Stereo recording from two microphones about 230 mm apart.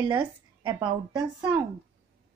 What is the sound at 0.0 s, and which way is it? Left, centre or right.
Speech, centre.